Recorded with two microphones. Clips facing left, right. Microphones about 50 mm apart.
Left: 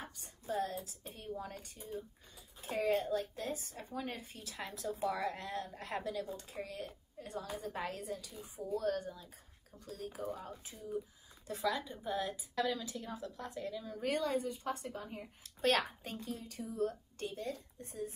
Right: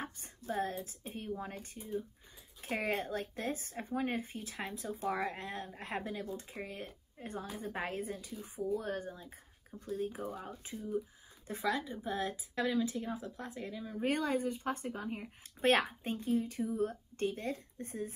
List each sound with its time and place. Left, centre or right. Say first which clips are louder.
0.5 s a woman's voice: right 1 dB; right; by 12.2 s centre
12.2 s speech: even; right
14.0 s a woman's voice: right 2 dB; right